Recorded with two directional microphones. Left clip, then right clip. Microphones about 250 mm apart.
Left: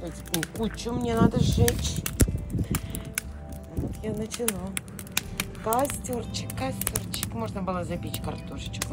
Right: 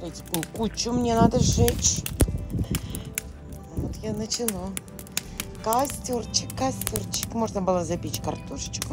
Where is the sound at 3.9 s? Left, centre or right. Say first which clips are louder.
Right 3 dB; centre.